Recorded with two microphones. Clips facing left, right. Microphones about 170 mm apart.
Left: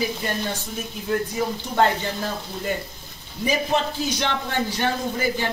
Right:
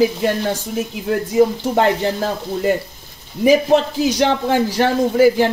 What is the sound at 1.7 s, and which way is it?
A man's voice, 85° right.